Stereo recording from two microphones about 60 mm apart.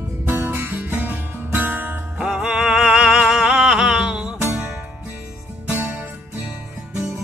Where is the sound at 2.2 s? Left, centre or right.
Centre.